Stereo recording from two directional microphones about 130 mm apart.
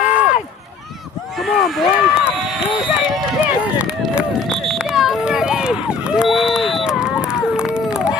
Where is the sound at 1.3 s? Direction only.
Centre (ahead or behind).